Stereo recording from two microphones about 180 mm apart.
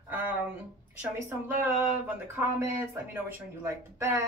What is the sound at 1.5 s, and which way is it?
Speech, 10° right (ahead or behind).